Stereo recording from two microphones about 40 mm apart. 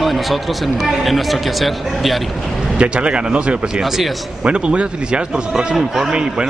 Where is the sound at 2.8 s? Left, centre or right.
Right.